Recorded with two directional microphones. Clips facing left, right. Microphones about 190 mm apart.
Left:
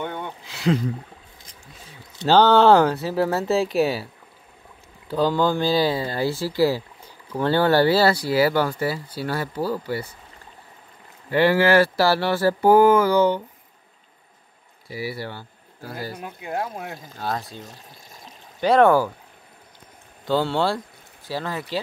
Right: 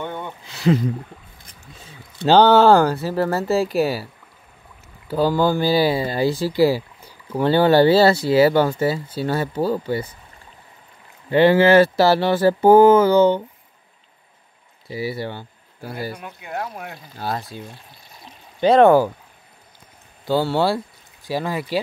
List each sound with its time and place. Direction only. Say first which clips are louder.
0.0 s a sound: right 1 dB; centre (ahead or behind)
2.2 s speech: right 3 dB; 15° right (ahead or behind)
2.5 s speech: right 2 dB; centre (ahead or behind); by 10.1 s 20° right (ahead or behind)
11.2 s speech: right 4 dB; 20° right (ahead or behind)
14.9 s speech: right 4 dB; 25° right (ahead or behind)
16.3 s speech: left 4 dB; 30° left (ahead or behind)
17.2 s speech: right 2 dB; 5° right (ahead or behind)
17.6 s pour: right 2 dB; 45° left (ahead or behind)
18.6 s speech: right 4 dB; 20° right (ahead or behind)
20.2 s speech: right 3 dB; 10° right (ahead or behind)